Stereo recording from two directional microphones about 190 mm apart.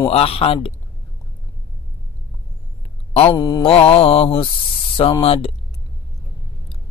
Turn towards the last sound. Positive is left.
turn(degrees=30)  # may be behind; listen again after turning